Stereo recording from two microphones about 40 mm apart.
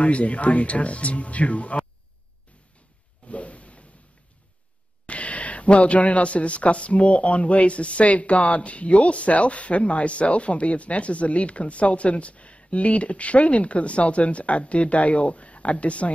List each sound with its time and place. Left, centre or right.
0.0 s a man's voice: left
3.3 s a sound: left
5.0 s a man's voice: left